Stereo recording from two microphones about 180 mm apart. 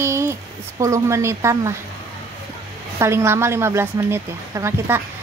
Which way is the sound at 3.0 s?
15° right (ahead or behind).